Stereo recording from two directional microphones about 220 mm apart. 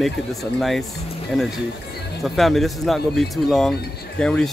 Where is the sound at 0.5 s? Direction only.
Centre (ahead or behind).